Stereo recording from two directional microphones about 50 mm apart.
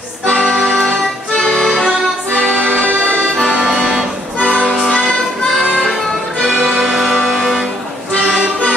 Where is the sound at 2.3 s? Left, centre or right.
Left.